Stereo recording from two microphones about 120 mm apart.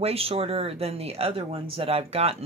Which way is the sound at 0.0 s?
55° right (ahead or behind).